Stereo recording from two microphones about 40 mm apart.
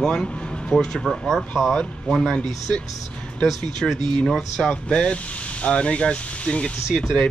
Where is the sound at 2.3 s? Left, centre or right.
Left.